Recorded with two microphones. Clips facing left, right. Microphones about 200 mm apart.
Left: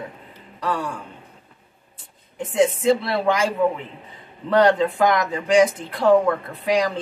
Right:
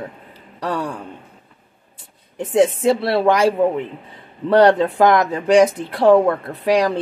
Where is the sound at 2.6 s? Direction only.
40° right (ahead or behind).